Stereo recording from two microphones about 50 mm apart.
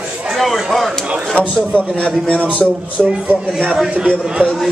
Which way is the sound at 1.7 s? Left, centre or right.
Left.